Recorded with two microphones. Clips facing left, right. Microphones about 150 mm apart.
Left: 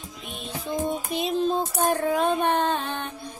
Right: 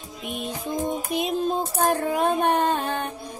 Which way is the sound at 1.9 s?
10° right (ahead or behind).